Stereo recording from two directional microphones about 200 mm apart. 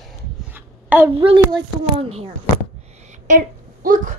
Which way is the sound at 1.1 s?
25° right (ahead or behind).